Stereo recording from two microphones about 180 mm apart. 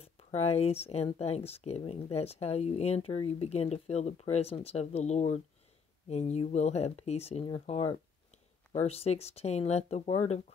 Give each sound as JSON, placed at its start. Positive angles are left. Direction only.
{"t": 0.0, "sound": "speech", "side_deg": 35}